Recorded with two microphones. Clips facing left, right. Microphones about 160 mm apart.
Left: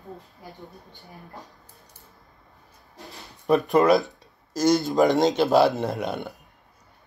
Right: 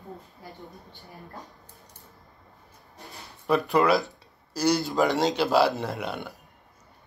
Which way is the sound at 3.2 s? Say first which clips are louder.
Left 3 dB; 20° left (ahead or behind).